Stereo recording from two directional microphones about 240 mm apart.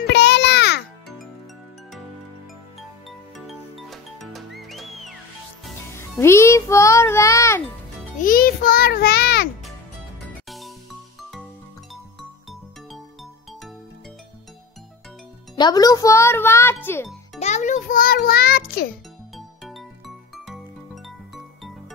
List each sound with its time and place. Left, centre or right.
0.0 s music: left
3.1 s music: centre
5.9 s a child's voice: centre
8.2 s music: left
10.5 s music: centre
15.5 s a child's voice: centre
17.4 s a child's voice: left
19.3 s music: centre